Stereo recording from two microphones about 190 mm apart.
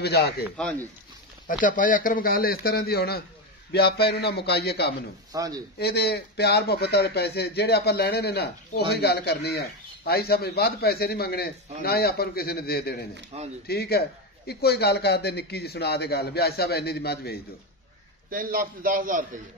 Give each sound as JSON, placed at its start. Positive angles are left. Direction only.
{"t": 0.0, "sound": "speech", "side_deg": 60}
{"t": 0.6, "sound": "speech", "side_deg": 10}
{"t": 1.5, "sound": "a man's voice", "side_deg": 45}
{"t": 5.3, "sound": "speech", "side_deg": -20}
{"t": 5.8, "sound": "a man's voice", "side_deg": 60}
{"t": 13.3, "sound": "speech", "side_deg": -35}
{"t": 13.7, "sound": "speech", "side_deg": 55}
{"t": 18.3, "sound": "a man's voice", "side_deg": -50}